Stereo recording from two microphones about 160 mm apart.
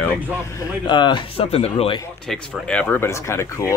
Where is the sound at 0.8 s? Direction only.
30° left (ahead or behind).